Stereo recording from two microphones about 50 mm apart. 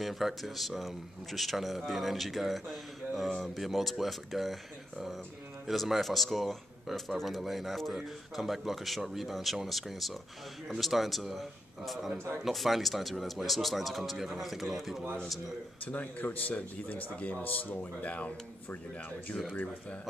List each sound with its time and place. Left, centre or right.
0.0 s speech: centre
15.8 s speech: left
19.5 s speech: left